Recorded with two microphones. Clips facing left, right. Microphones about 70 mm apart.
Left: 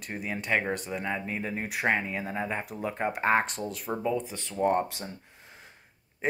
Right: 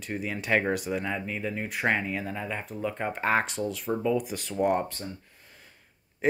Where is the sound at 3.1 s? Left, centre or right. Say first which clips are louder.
Left 1 dB; centre.